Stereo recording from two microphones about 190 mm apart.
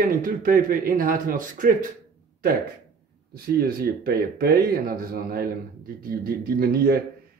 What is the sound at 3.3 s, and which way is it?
Speech, 55° right (ahead or behind).